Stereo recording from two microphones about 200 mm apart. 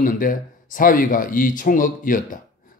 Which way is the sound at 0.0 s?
45° left (ahead or behind).